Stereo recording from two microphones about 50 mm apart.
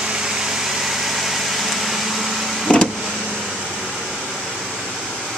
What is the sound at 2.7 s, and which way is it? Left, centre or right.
Vehicle, centre.